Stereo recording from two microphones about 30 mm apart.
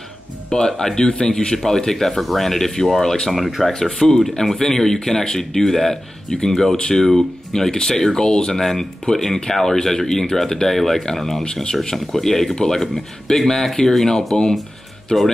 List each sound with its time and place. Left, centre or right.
0.5 s speech: left
1.6 s speech: centre
3.3 s speech: centre; by 8.5 s left
8.5 s speech: centre